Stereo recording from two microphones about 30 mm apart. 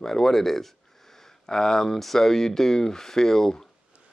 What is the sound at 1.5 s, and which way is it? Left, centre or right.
Speech, left.